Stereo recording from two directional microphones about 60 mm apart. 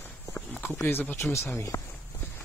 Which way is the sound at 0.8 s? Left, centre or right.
Left.